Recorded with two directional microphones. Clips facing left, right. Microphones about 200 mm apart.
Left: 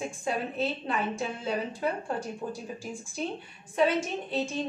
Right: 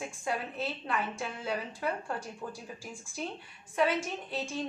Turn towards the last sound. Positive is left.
turn(degrees=20)  # may be behind; listen again after turning